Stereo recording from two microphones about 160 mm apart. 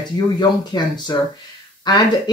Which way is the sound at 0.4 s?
25° left (ahead or behind).